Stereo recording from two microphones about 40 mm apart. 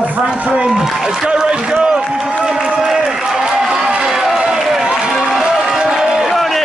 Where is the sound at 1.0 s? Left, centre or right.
Centre.